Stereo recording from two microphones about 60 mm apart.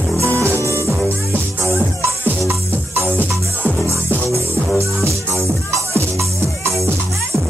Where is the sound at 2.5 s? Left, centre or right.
Right.